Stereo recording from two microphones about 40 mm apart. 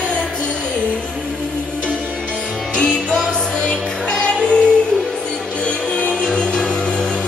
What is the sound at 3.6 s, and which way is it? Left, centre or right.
Music, left.